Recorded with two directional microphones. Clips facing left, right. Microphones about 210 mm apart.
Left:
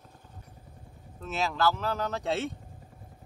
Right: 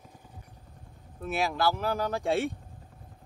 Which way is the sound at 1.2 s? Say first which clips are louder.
Right 1 dB; 10° right (ahead or behind).